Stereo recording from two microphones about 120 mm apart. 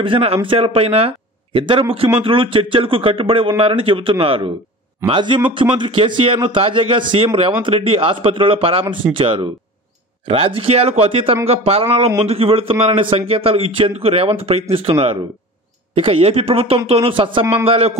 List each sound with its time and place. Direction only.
0.0 s a man's voice: 50° right (ahead or behind)